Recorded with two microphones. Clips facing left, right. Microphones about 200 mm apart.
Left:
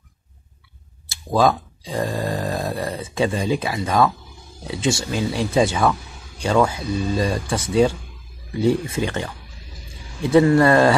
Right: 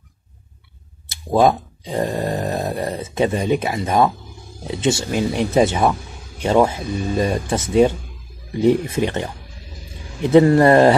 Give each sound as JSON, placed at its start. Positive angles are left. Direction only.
{"t": 1.3, "sound": "speech", "side_deg": -25}
{"t": 10.3, "sound": "speech", "side_deg": -25}